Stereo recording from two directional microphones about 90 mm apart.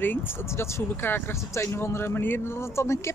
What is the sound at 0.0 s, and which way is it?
Speech, 25° left (ahead or behind).